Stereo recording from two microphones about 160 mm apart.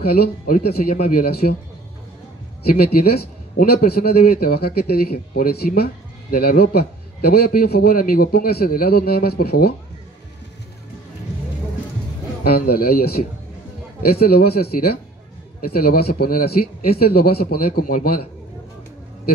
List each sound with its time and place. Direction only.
0.0 s a man's voice: 70° left (ahead or behind)
2.7 s a man's voice: 70° left (ahead or behind)
12.4 s a man's voice: 70° left (ahead or behind)